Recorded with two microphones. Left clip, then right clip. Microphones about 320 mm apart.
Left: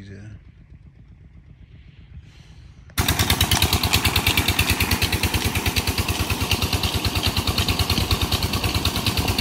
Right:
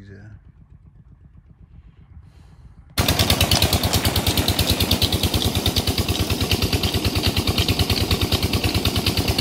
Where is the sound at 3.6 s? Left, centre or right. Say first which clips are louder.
Right 1 dB; centre.